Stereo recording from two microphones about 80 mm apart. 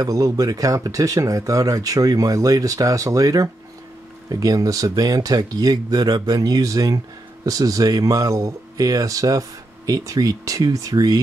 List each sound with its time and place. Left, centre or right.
0.0 s speech: right